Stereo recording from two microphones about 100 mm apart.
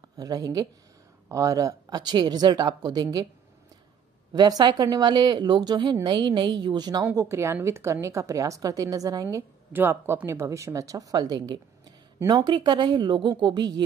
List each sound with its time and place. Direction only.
0.2 s speech: 40° right (ahead or behind)
4.3 s speech: 40° right (ahead or behind)
7.2 s a woman's voice: 30° right (ahead or behind)
9.7 s speech: 20° right (ahead or behind); by 13.8 s 45° right (ahead or behind)